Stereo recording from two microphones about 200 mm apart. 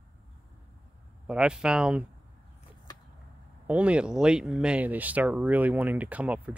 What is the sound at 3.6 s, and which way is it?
Speech, 5° right (ahead or behind).